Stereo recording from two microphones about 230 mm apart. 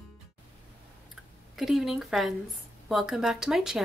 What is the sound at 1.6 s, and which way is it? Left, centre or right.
Music, centre.